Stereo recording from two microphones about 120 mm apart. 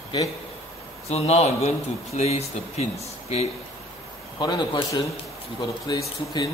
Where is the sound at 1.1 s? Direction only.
60° left (ahead or behind).